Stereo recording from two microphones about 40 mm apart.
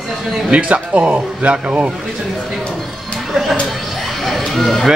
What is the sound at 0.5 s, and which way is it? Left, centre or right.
Speech, right.